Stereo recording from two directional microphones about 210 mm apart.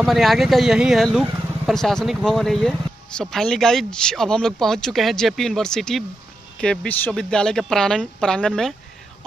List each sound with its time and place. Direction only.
0.0 s speech: centre (ahead or behind)